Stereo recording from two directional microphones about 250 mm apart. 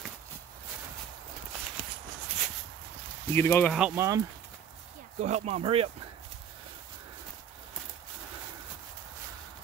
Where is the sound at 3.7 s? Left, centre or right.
Centre.